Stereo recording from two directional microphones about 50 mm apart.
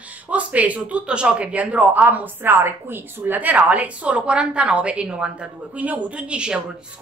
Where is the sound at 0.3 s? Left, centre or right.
Right.